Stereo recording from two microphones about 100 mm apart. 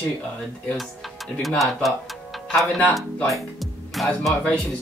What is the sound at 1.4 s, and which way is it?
Speech, centre (ahead or behind).